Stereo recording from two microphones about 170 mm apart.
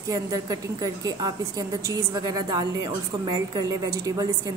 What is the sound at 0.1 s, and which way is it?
A woman's voice, 20° right (ahead or behind).